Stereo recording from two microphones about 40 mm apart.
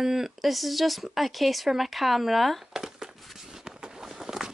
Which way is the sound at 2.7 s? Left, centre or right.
Centre.